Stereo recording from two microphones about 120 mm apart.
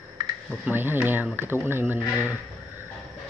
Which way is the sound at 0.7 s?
15° right (ahead or behind).